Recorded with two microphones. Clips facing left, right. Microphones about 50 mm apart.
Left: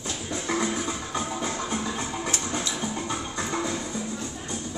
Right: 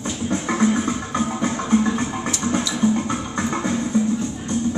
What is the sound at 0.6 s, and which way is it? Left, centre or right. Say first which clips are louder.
Music: right 10 dB; right.